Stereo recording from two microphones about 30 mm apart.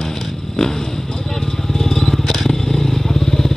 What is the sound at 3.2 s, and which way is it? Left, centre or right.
Motorcycle, centre.